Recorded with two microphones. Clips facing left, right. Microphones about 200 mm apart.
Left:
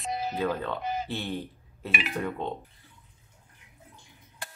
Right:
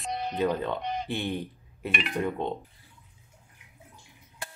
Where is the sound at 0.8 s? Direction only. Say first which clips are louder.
Left 1 dB; 5° left (ahead or behind).